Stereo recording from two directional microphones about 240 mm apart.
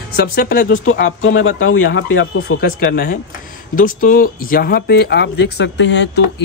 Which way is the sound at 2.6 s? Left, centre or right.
Left.